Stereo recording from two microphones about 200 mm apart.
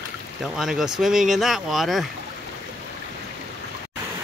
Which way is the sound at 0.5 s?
Centre (ahead or behind).